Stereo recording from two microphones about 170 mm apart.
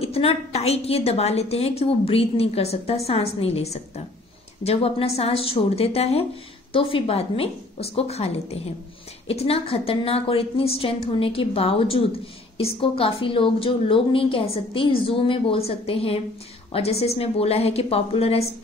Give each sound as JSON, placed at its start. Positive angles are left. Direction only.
{"t": 0.0, "sound": "a woman's voice", "side_deg": 35}